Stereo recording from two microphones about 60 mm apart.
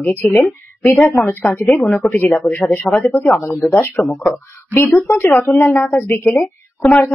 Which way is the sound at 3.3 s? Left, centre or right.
Left.